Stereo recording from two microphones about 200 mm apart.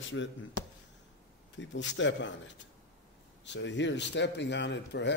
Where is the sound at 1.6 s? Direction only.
65° left (ahead or behind).